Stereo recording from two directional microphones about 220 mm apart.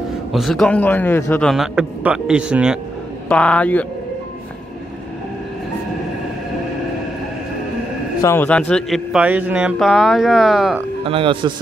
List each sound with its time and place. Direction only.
0.3 s a man's voice: centre (ahead or behind)
8.2 s a man's voice: 10° left (ahead or behind)
11.1 s speech: 25° right (ahead or behind)